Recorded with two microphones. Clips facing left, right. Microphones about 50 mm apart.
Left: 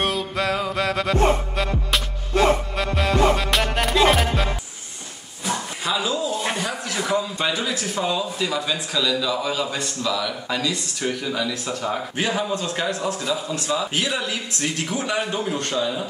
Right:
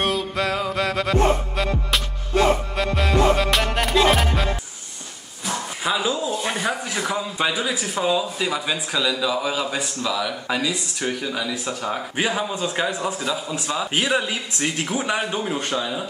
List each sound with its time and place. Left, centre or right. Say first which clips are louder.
0.0 s music: right 1 dB; centre
5.9 s a sound: right 1 dB; centre
7.2 s speech: even; centre